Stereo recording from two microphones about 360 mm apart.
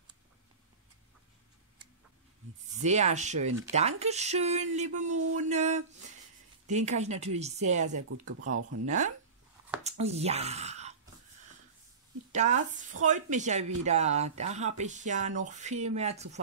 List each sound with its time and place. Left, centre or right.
2.7 s speech: centre
8.5 s speech: right
8.8 s speech: centre
12.3 s speech: centre